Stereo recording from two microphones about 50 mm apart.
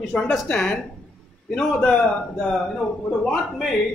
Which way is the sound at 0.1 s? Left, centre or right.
Centre.